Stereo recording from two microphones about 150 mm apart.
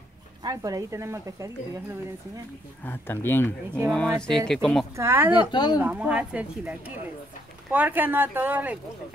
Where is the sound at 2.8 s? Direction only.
15° left (ahead or behind).